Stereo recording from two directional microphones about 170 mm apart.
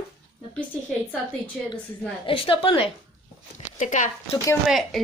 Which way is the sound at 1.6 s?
Centre (ahead or behind).